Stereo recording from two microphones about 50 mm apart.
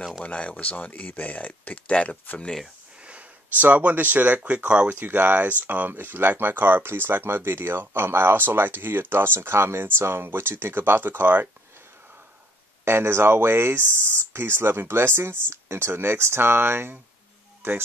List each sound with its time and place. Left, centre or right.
0.2 s speech: left
3.1 s speech: right
12.8 s speech: right